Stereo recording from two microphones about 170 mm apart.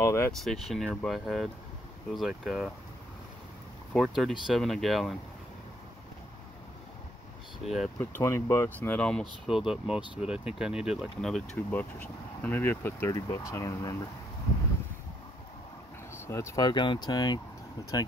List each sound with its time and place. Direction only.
0.0 s speech: 15° left (ahead or behind)
0.3 s speech: centre (ahead or behind)
3.9 s speech: centre (ahead or behind)
7.5 s speech: centre (ahead or behind)
8.0 s speech: 15° left (ahead or behind)
16.1 s speech: 15° left (ahead or behind)